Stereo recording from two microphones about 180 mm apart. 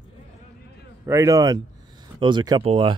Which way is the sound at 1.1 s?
15° right (ahead or behind).